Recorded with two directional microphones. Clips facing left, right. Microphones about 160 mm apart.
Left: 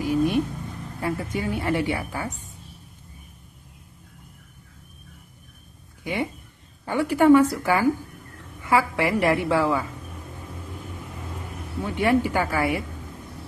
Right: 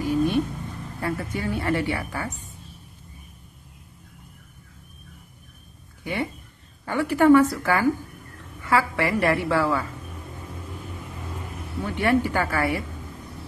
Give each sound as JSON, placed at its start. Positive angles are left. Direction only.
{"t": 0.0, "sound": "a sound", "side_deg": 15}
{"t": 1.0, "sound": "a woman's voice", "side_deg": 15}
{"t": 6.9, "sound": "a woman's voice", "side_deg": 15}
{"t": 11.8, "sound": "a woman's voice", "side_deg": 15}